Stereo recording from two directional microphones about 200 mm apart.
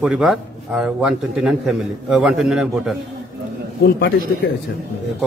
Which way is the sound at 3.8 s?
50° left (ahead or behind).